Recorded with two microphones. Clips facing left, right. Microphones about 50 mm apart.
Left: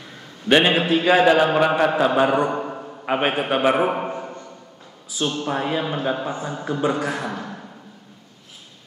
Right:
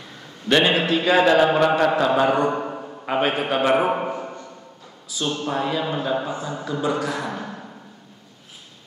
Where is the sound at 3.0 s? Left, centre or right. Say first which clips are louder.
Left 1 dB; centre.